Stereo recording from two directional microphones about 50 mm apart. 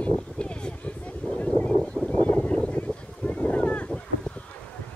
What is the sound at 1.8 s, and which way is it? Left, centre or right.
Boat, centre.